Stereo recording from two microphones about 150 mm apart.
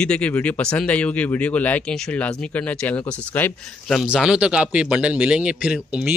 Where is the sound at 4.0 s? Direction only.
5° right (ahead or behind).